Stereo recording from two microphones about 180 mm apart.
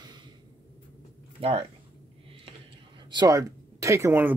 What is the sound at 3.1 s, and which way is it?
Speech, 20° right (ahead or behind).